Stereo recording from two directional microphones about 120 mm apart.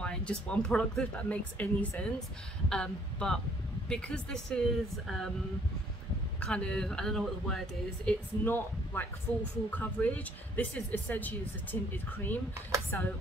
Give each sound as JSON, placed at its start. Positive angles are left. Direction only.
{"t": 0.0, "sound": "speech", "side_deg": 10}
{"t": 6.4, "sound": "speech", "side_deg": 10}
{"t": 12.9, "sound": "speech", "side_deg": 15}